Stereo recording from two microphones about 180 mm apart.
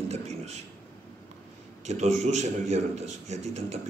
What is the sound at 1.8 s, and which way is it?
A man's voice, 40° right (ahead or behind).